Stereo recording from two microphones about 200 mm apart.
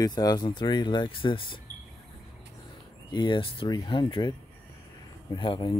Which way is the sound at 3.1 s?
25° left (ahead or behind).